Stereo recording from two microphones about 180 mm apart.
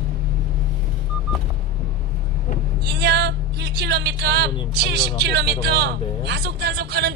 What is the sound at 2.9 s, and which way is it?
Speech, 65° right (ahead or behind).